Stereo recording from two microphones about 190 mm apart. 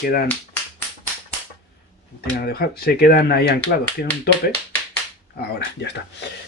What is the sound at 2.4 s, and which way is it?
Speech, 55° left (ahead or behind).